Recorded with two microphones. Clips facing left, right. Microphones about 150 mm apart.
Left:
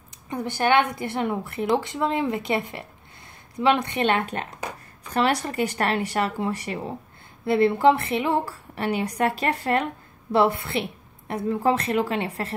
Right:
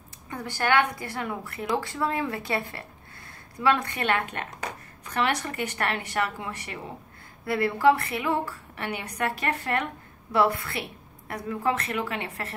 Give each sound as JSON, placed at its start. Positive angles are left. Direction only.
{"t": 0.3, "sound": "a woman's voice", "side_deg": 20}